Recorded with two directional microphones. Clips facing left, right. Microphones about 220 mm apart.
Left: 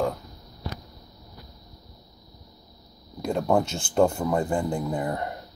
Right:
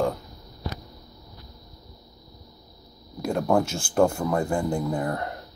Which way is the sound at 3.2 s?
5° right (ahead or behind).